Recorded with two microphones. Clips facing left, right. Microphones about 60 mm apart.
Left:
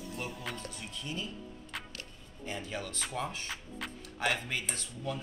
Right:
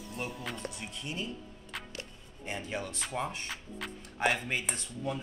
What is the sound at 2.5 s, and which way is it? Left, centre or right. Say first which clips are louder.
Speech: right 2 dB; right.